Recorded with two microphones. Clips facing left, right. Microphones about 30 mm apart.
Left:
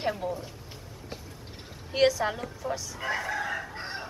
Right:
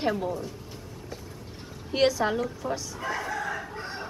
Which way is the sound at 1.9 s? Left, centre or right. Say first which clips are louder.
Right 1 dB; centre.